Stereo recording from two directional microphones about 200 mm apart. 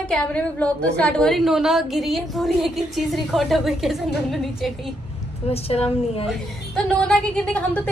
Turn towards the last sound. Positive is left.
turn(degrees=5)  # may be behind; listen again after turning